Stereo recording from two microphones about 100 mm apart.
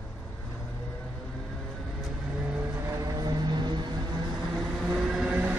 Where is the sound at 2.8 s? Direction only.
30° right (ahead or behind); by 4.0 s 50° right (ahead or behind).